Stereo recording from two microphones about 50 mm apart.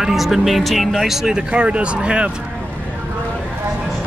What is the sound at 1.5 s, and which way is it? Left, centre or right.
Speech, right.